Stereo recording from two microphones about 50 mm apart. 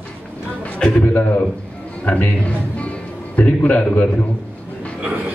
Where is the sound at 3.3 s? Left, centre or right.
Left.